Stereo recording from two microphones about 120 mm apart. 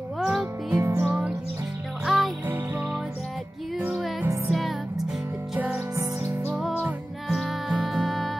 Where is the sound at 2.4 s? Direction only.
15° right (ahead or behind).